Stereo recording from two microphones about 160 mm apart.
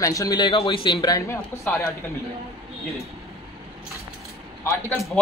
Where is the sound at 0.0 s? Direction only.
20° left (ahead or behind).